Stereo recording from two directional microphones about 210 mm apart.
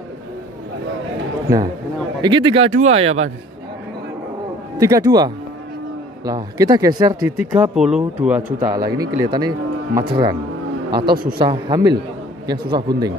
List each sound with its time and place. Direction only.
1.5 s speech: 15° right (ahead or behind); by 3.3 s 30° right (ahead or behind)
4.7 s speech: 15° right (ahead or behind)
8.5 s speech: 15° right (ahead or behind)
11.1 s a man's voice: 40° right (ahead or behind)
11.3 s speech: 20° right (ahead or behind)